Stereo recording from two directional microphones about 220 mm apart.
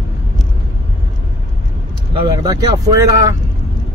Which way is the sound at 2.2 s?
20° right (ahead or behind).